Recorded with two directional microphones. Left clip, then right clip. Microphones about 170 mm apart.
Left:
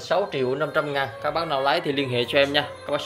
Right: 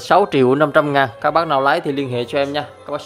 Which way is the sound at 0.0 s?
90° right.